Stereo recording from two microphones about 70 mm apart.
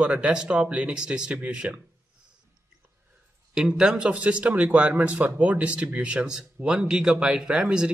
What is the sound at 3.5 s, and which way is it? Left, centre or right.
Speech, centre.